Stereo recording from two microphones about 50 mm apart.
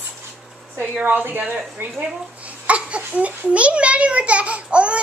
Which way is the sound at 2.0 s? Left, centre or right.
Right.